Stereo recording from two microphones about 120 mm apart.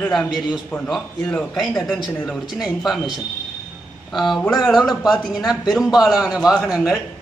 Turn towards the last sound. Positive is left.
turn(degrees=-5)  # may be behind; listen again after turning